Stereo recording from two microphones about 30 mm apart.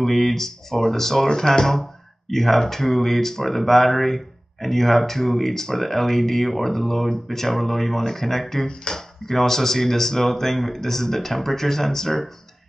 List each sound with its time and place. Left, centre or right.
0.0 s speech: centre